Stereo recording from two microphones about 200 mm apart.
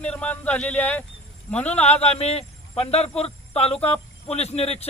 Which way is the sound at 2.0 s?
30° left (ahead or behind).